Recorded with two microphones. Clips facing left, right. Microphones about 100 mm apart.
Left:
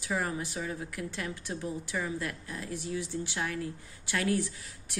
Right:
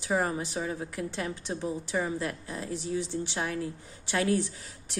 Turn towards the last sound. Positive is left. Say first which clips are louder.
# right 1 dB
turn(degrees=-25)  # may be behind; listen again after turning